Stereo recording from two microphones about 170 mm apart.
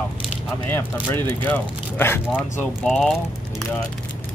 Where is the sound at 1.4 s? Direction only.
10° left (ahead or behind).